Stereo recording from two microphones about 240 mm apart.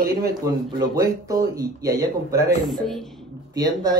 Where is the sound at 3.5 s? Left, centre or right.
Centre.